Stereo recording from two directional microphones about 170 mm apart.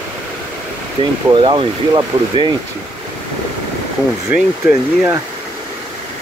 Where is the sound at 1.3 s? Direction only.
30° right (ahead or behind).